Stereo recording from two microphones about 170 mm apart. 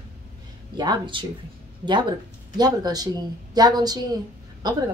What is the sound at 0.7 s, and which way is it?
A woman's voice, 25° right (ahead or behind).